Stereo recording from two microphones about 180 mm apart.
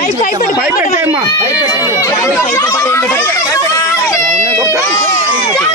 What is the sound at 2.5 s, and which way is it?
Children playing, 15° left (ahead or behind).